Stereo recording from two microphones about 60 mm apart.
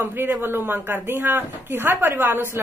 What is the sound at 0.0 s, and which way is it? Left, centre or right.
Speech, right.